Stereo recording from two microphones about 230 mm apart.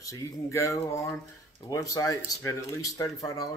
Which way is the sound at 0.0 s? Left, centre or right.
Centre.